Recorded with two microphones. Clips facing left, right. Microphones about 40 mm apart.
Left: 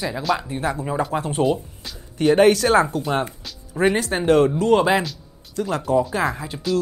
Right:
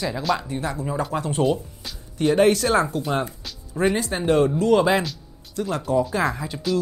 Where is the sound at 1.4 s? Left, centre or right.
Centre.